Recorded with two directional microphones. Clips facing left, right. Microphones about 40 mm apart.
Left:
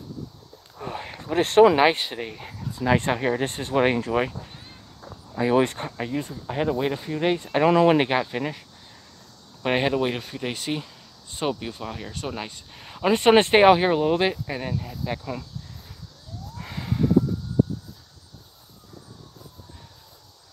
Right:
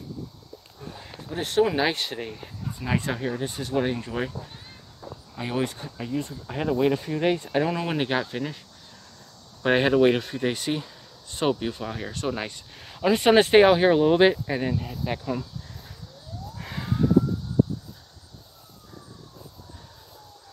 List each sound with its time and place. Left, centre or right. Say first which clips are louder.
1.0 s a sound: left 8 dB; left
1.8 s speech: left 5 dB; centre
3.0 s speech: left 5 dB; left
3.5 s speech: left 3 dB; left
3.8 s speech: left 6 dB; left
5.6 s speech: left 6 dB; left
6.9 s speech: right 1 dB; centre
7.6 s speech: left 9 dB; left
8.1 s speech: left 2 dB; centre
9.6 s speech: right 3 dB; centre
11.4 s speech: right 3 dB; centre
12.8 s speech: left 1 dB; centre
13.9 s speech: right 3 dB; centre
16.5 s emergency vehicle: even; centre